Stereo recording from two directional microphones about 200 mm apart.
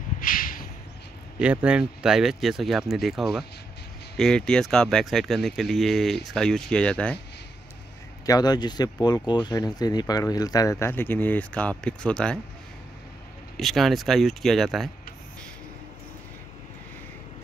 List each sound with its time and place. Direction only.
0.2 s a sound: 45° left (ahead or behind)
1.4 s speech: 5° right (ahead or behind)
8.3 s speech: 20° left (ahead or behind)
13.6 s speech: centre (ahead or behind)